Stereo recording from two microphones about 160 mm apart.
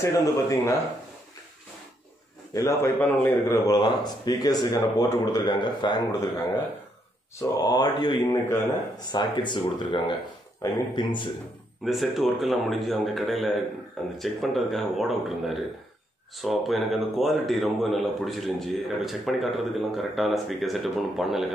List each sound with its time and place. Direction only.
0.0 s a man's voice: 20° left (ahead or behind)
2.5 s a man's voice: 20° left (ahead or behind)
7.5 s a man's voice: 25° left (ahead or behind)
11.8 s a man's voice: centre (ahead or behind)